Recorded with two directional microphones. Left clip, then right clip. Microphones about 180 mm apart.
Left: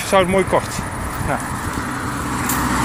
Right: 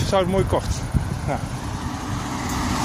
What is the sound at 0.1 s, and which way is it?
Speech, 10° right (ahead or behind).